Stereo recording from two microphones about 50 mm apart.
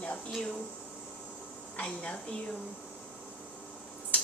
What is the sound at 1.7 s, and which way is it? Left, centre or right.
Speech, left.